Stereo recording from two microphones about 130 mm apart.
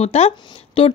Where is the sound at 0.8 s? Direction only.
45° left (ahead or behind).